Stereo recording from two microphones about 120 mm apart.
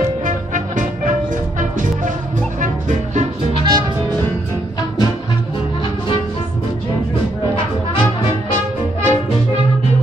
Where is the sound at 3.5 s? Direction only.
40° right (ahead or behind).